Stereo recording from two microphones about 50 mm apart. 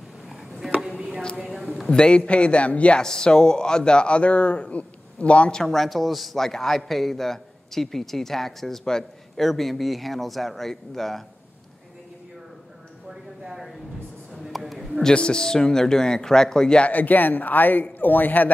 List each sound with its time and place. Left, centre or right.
0.3 s a sound: centre
0.7 s chopping: centre
1.4 s a sound: centre
1.9 s speech: centre
3.0 s speech: centre
5.6 s a man's voice: centre
13.1 s a sound: centre
15.0 s a man's voice: centre
16.8 s a man's voice: left